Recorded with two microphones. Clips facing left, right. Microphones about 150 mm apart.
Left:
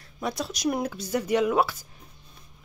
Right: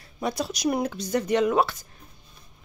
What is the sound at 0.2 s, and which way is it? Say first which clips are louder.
Speech: right 2 dB; centre (ahead or behind).